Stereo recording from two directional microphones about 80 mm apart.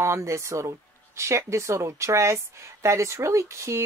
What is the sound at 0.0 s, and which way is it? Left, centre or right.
Speech, right.